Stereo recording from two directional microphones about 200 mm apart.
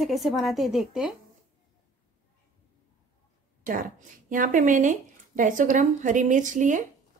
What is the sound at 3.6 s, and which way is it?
Speech, 45° right (ahead or behind).